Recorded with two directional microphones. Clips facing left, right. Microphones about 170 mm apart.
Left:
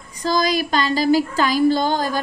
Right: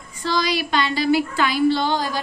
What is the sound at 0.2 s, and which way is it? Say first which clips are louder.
A woman's voice: left 3 dB; 45° left (ahead or behind).